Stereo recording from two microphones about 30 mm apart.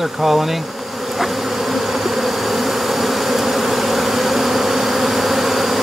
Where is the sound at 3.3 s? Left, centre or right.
Centre.